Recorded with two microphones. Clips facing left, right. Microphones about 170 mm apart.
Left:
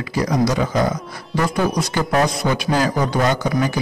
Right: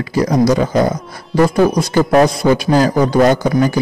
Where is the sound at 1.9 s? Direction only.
35° right (ahead or behind).